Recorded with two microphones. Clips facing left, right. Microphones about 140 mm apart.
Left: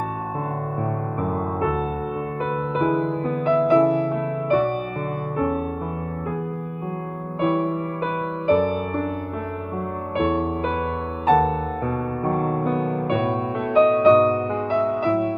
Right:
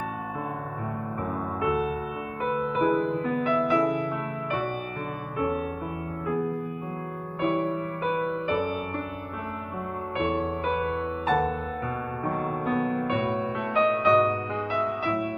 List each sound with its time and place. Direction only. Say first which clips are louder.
2.7 s music: left 3 dB; 35° left (ahead or behind)
8.5 s music: left 8 dB; 35° left (ahead or behind)
10.8 s music: left 2 dB; 30° left (ahead or behind)
12.7 s music: left 3 dB; 45° left (ahead or behind)
13.7 s music: left 7 dB; 30° left (ahead or behind)